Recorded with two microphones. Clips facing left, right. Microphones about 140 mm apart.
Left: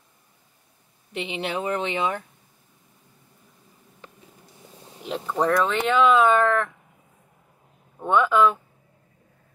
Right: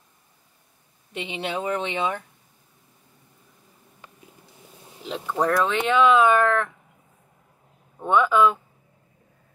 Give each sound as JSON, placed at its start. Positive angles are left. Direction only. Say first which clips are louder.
{"t": 1.1, "sound": "speech", "louder": "left 1 dB", "side_deg": -20}
{"t": 5.0, "sound": "speech", "louder": "even", "side_deg": 5}
{"t": 8.0, "sound": "speech", "louder": "even", "side_deg": 0}